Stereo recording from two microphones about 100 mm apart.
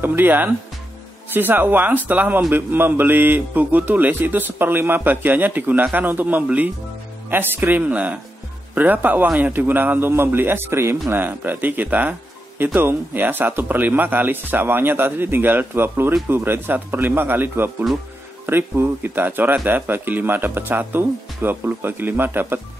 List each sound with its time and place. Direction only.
0.0 s a man's voice: 20° right (ahead or behind)